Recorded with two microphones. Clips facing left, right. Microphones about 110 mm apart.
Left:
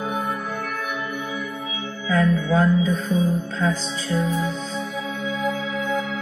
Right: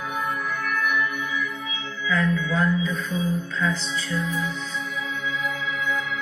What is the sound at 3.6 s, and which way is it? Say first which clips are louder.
Music: left 3 dB; 50° left (ahead or behind).